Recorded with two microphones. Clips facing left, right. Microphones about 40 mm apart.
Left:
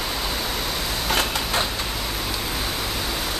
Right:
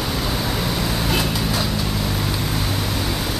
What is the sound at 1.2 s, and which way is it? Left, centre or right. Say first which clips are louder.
Vehicle: right 1 dB; left.